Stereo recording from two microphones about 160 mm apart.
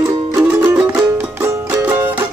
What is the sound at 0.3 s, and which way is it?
Music, 10° right (ahead or behind).